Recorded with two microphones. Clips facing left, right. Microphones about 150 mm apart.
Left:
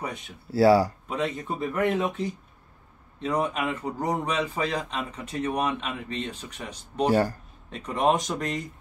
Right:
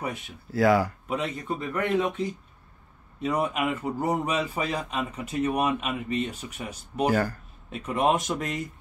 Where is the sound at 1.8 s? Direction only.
Centre (ahead or behind).